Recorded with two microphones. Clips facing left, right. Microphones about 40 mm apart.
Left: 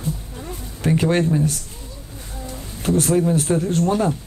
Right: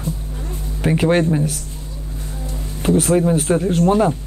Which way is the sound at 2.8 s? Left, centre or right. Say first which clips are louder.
Right 3 dB; centre.